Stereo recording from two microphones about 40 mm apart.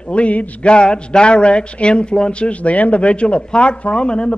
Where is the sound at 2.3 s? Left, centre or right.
Left.